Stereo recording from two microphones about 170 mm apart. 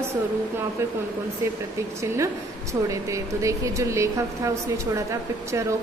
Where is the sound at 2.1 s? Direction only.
20° right (ahead or behind).